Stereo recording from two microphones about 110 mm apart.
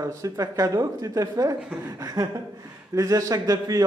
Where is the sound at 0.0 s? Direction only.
30° right (ahead or behind).